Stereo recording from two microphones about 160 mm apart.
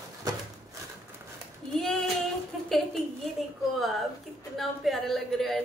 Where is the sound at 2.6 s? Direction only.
Centre (ahead or behind).